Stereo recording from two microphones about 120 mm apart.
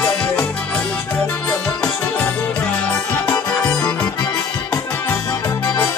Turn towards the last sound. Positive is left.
turn(degrees=20)  # may be behind; listen again after turning